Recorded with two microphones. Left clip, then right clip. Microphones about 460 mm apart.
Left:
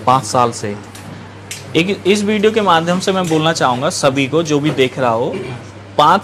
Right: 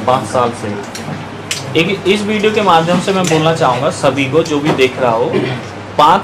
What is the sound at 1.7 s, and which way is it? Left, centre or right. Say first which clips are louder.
A man's voice: right 1 dB; left.